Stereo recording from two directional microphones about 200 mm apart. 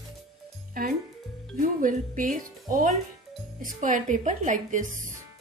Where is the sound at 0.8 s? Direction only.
45° right (ahead or behind).